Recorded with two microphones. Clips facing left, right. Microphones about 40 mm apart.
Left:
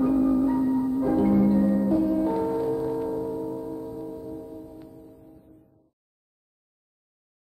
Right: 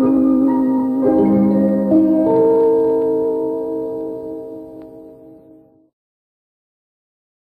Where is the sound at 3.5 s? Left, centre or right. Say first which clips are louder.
Right 12 dB; right.